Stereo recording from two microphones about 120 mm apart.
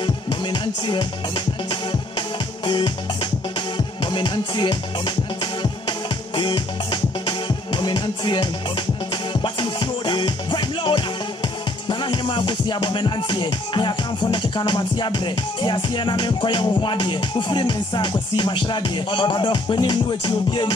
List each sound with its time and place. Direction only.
0.0 s music: 40° left (ahead or behind)